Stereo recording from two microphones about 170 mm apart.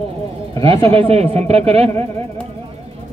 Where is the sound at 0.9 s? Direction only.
35° right (ahead or behind).